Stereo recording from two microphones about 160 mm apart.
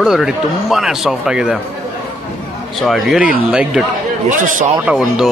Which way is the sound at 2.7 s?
Centre (ahead or behind).